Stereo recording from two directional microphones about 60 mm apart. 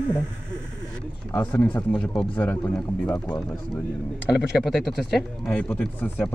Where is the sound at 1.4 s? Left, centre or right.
Left.